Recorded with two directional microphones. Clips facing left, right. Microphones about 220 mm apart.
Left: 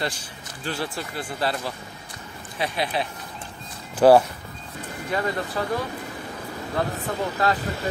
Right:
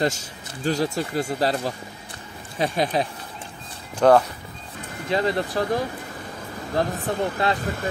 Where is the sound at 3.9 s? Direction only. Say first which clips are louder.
Left 2 dB; 5° left (ahead or behind).